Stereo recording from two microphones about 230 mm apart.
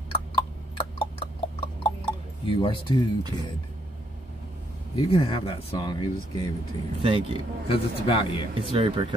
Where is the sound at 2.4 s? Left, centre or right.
Left.